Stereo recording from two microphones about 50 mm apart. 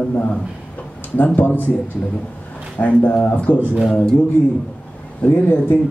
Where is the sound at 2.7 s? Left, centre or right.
Left.